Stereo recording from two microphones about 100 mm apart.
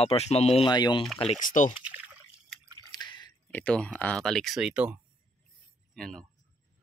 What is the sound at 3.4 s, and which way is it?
Speech, 10° left (ahead or behind).